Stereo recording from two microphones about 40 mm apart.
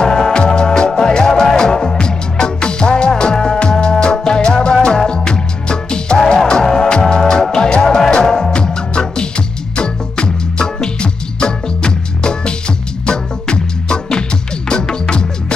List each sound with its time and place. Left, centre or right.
0.0 s music: centre
7.8 s music: centre